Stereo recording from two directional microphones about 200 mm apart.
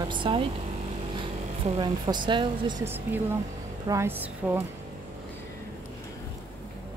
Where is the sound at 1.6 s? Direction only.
20° right (ahead or behind).